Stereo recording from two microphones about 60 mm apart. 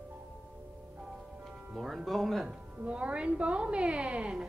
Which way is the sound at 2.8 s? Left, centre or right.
Centre.